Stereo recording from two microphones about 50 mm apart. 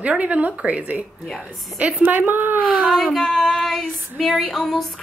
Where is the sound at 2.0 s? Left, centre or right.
Right.